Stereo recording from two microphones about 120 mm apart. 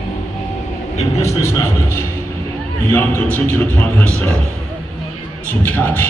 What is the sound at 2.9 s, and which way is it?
A man's voice, 15° left (ahead or behind).